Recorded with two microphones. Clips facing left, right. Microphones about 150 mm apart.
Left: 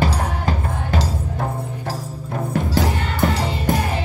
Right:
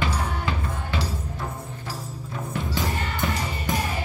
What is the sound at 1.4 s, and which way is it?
Music, 55° left (ahead or behind).